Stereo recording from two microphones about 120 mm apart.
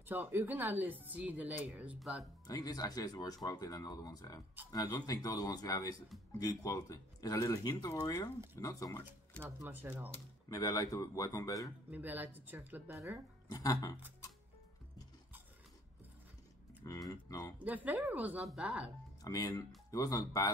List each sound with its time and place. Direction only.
0.0 s a woman's voice: 15° right (ahead or behind)
2.4 s speech: 30° left (ahead or behind)
9.4 s a woman's voice: 20° right (ahead or behind)
10.5 s speech: 30° left (ahead or behind)
11.9 s a woman's voice: 15° right (ahead or behind)
13.5 s speech: 30° left (ahead or behind)
16.8 s speech: 30° left (ahead or behind)
17.6 s a woman's voice: 15° right (ahead or behind)
19.2 s speech: 30° left (ahead or behind)